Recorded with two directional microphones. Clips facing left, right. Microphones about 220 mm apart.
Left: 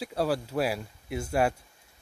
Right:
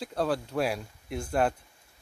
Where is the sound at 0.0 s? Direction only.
5° left (ahead or behind).